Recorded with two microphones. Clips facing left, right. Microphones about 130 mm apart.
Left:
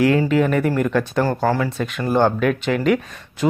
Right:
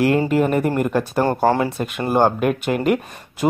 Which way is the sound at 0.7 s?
10° right (ahead or behind).